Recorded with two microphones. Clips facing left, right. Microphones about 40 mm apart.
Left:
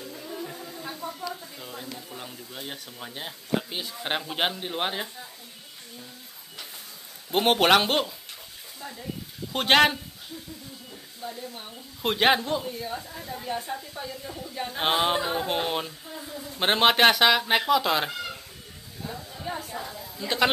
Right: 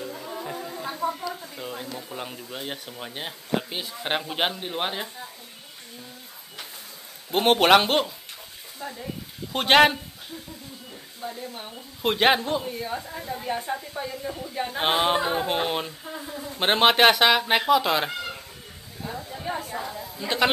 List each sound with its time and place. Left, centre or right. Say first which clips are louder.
0.0 s music: right 3 dB; right
1.6 s speech: right 4 dB; right
3.7 s a woman's voice: right 2 dB; centre
7.2 s a man's voice: right 2 dB; centre
8.7 s frying: right 4 dB; centre
9.5 s a woman's voice: right 2 dB; centre
11.2 s speech: right 2 dB; centre
12.0 s a woman's voice: right 1 dB; centre
12.6 s a woman's voice: right 2 dB; right
16.2 s a sound: right 2 dB; right
16.5 s a woman's voice: right 2 dB; centre
19.0 s chatter: right 3 dB; centre